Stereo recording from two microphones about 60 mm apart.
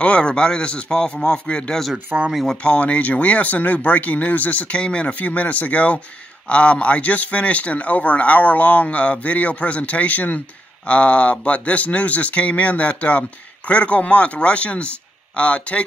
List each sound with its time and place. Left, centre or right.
0.0 s speech: centre
2.1 s speech: right
2.5 s speech: left